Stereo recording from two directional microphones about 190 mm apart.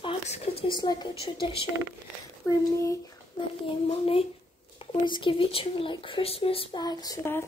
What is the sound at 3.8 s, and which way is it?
Speech, 30° left (ahead or behind).